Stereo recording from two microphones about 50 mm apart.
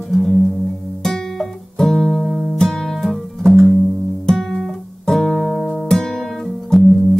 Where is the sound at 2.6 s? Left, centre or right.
Centre.